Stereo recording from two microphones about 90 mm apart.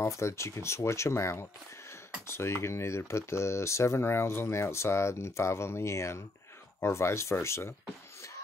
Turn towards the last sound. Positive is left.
turn(degrees=30)  # may be behind; listen again after turning